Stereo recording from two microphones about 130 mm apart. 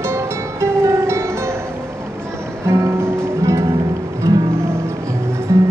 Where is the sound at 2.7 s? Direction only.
20° right (ahead or behind).